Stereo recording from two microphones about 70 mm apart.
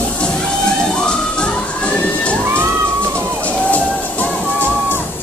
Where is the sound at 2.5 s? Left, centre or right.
Right.